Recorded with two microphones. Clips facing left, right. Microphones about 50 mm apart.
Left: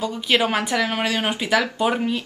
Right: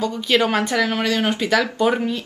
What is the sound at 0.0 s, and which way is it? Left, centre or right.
Speech, centre.